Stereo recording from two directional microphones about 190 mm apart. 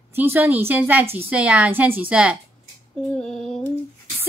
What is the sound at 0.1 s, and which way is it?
Speech, 10° right (ahead or behind).